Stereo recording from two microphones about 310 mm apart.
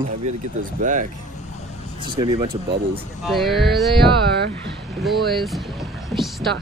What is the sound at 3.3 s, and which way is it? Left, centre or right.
Speech, centre.